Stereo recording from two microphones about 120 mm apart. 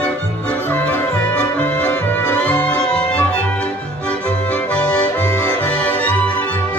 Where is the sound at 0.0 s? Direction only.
10° left (ahead or behind).